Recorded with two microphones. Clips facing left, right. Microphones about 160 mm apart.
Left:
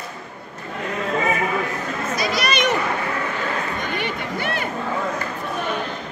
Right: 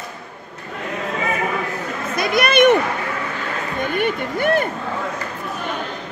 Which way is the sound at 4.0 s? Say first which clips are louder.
Right 5 dB; 50° right (ahead or behind).